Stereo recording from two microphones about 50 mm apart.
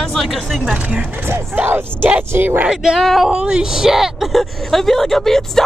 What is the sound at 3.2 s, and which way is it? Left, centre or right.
Speech, centre.